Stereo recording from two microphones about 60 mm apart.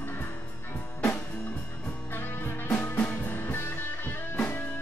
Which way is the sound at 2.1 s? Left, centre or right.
Left.